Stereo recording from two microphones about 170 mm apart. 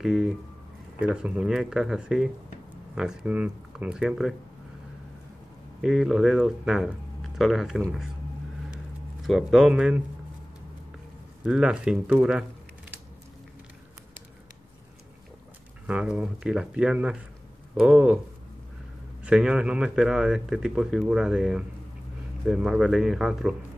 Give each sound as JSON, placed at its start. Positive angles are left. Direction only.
{"t": 0.0, "sound": "a man's voice", "side_deg": 0}
{"t": 5.8, "sound": "a man's voice", "side_deg": -5}
{"t": 9.2, "sound": "a man's voice", "side_deg": 0}
{"t": 11.4, "sound": "a man's voice", "side_deg": -5}
{"t": 15.9, "sound": "a man's voice", "side_deg": -5}
{"t": 19.2, "sound": "a man's voice", "side_deg": -5}